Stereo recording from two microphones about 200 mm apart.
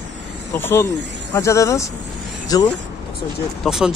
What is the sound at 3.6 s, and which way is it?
Speech, centre (ahead or behind).